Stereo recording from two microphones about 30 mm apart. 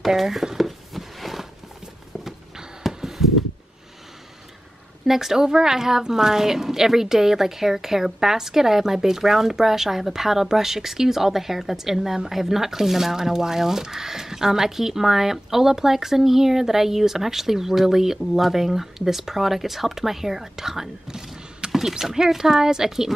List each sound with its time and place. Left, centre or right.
0.1 s speech: centre
0.6 s a sound: centre
5.0 s speech: centre